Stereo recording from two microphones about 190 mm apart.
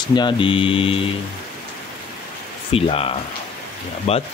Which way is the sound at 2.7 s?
30° left (ahead or behind).